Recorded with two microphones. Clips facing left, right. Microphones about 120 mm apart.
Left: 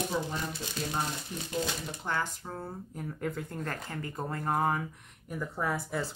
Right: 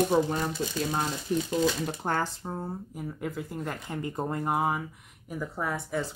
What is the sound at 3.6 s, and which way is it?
Speech, 20° right (ahead or behind).